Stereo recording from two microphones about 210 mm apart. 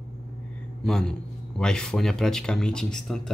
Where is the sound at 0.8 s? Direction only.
5° left (ahead or behind).